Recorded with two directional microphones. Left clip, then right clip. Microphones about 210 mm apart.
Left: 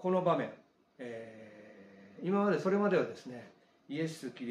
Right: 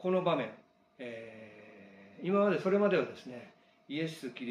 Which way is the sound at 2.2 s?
5° left (ahead or behind).